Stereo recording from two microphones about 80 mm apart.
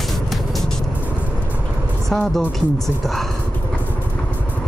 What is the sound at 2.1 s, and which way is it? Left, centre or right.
Speech, centre.